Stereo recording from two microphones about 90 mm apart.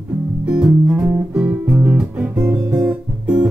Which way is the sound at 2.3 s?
40° right (ahead or behind).